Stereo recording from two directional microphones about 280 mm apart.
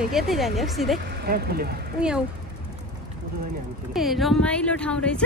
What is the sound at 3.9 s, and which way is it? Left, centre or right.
A woman's voice, centre.